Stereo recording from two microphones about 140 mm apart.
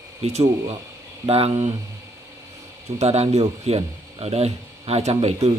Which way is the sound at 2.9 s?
50° right (ahead or behind).